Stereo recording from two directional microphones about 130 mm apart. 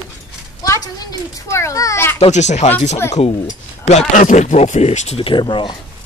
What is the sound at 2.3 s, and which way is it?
Speech, 65° left (ahead or behind).